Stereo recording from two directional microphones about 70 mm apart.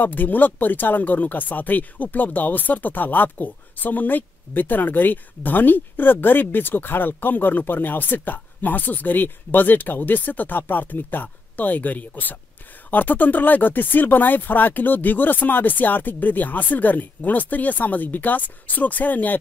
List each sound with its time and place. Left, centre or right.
0.0 s speech: left